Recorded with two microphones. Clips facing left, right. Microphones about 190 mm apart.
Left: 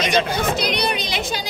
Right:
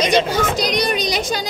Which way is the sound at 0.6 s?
45° right (ahead or behind).